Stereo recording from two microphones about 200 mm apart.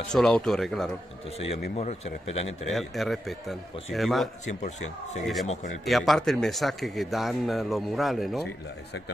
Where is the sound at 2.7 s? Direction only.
Centre (ahead or behind).